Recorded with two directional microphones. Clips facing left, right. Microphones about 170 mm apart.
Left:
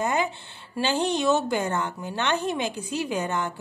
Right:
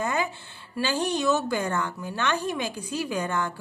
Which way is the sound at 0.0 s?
25° left (ahead or behind).